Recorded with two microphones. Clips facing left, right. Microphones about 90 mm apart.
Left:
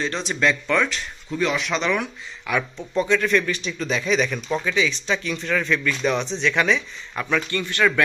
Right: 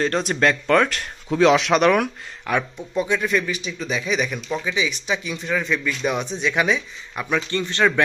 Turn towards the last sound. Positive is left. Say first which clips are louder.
# right 1 dB
turn(degrees=-25)  # may be behind; listen again after turning